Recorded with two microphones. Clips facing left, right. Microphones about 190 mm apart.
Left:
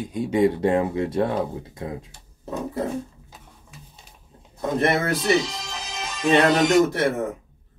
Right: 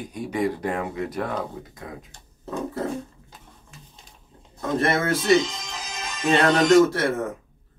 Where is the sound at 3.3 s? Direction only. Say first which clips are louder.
Left 1 dB; 5° left (ahead or behind).